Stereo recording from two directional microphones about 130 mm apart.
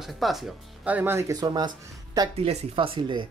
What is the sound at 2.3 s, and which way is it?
Speech, 50° right (ahead or behind).